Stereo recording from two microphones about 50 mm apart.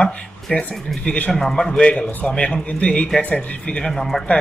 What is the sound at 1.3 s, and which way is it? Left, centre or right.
Speech, centre.